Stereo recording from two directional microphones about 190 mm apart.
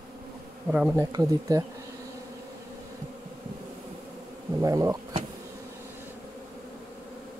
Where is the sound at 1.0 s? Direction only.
20° right (ahead or behind).